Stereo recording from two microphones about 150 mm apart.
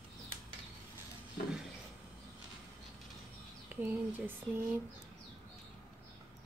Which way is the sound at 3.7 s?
15° right (ahead or behind).